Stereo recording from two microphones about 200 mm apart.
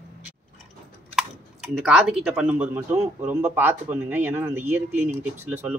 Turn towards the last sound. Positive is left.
turn(degrees=-10)  # may be behind; listen again after turning